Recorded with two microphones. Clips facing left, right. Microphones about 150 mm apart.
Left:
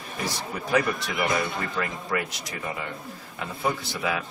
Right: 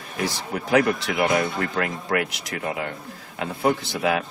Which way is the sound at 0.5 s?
65° right (ahead or behind).